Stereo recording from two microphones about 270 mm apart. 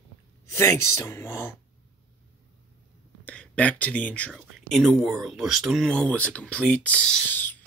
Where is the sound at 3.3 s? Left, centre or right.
Centre.